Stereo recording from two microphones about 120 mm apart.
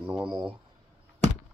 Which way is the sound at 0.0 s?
5° right (ahead or behind).